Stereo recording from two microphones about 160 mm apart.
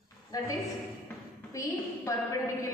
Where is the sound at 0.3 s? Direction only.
20° left (ahead or behind).